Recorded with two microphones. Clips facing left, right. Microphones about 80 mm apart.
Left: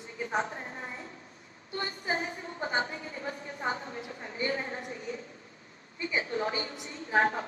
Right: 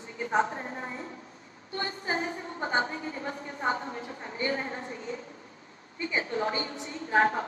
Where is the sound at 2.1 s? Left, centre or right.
Right.